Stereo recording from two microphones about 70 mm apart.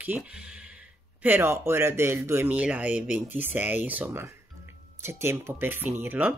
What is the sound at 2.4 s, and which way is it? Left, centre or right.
Speech, right.